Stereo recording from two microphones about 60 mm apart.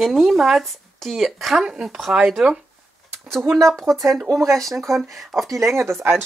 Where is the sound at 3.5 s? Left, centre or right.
Centre.